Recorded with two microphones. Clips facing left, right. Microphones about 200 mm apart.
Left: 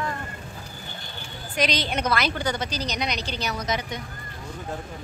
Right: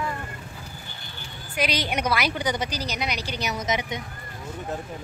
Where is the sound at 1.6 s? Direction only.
10° right (ahead or behind).